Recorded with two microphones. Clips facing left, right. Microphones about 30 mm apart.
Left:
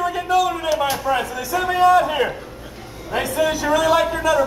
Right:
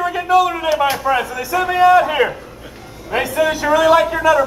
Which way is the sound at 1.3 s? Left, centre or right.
Centre.